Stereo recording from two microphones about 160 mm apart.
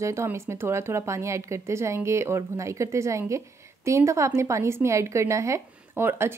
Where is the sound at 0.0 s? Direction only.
15° right (ahead or behind).